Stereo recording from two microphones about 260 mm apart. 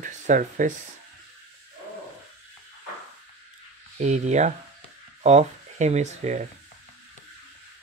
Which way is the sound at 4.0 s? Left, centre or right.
Right.